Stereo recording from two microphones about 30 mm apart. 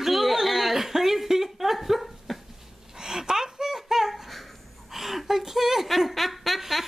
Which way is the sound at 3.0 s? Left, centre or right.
Right.